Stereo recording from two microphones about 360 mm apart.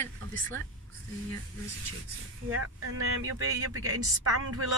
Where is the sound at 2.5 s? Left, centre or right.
Right.